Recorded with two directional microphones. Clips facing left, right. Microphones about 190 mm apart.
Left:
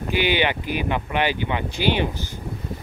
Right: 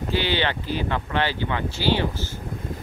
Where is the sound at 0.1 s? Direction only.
15° left (ahead or behind).